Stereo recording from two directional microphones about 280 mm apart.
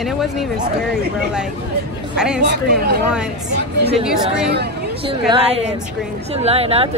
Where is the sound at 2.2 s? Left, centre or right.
Centre.